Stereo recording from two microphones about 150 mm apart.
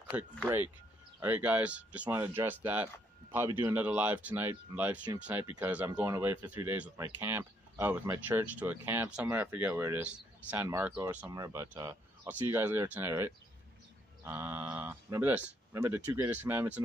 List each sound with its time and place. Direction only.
0.1 s speech: 10° right (ahead or behind)
11.2 s speech: 20° right (ahead or behind)